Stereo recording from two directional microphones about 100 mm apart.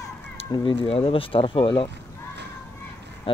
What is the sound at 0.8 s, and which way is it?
Speech, 70° left (ahead or behind).